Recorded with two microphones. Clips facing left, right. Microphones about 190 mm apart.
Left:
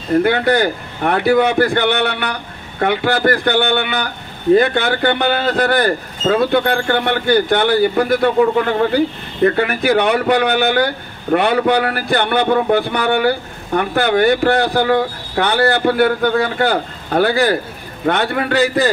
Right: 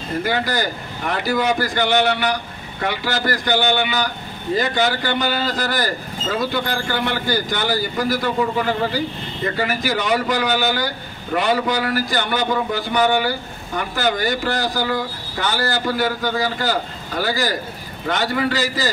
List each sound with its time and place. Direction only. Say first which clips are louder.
0.2 s speech: left 5 dB; 60° left (ahead or behind)